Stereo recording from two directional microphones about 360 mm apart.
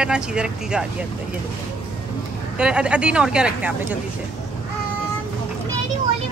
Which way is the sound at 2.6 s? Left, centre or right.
Centre.